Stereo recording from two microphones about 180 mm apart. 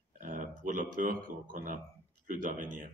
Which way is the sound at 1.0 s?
50° right (ahead or behind).